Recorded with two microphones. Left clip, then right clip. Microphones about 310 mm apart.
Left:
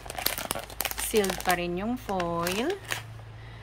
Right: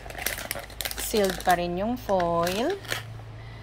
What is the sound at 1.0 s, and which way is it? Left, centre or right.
Crumpling, centre.